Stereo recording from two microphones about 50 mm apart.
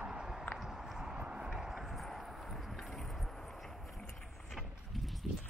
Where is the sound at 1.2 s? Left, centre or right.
Centre.